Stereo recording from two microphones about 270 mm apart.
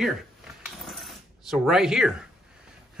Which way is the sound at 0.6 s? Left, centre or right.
Centre.